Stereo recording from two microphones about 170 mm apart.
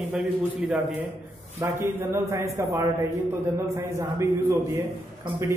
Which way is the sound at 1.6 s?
15° right (ahead or behind).